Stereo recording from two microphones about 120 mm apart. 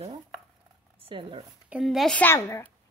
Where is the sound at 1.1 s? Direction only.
45° right (ahead or behind).